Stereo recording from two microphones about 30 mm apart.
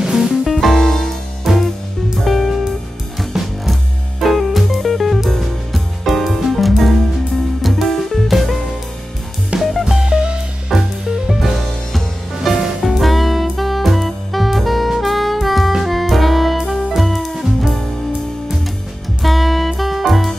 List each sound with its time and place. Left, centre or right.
0.0 s music: centre
0.5 s music: centre
0.8 s music: centre
1.5 s music: centre
9.6 s music: centre
9.9 s music: right
10.7 s music: centre
12.8 s music: centre
19.2 s music: centre